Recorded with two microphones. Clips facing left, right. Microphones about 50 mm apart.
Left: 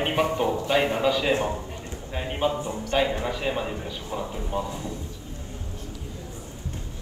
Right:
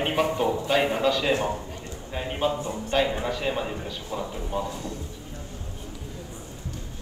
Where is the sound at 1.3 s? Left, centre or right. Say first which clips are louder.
Even; left.